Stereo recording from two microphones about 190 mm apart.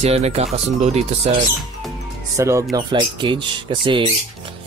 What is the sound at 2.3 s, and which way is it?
Speech, 15° right (ahead or behind).